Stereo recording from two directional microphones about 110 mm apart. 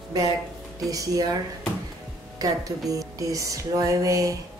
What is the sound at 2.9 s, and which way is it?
Music, 30° right (ahead or behind).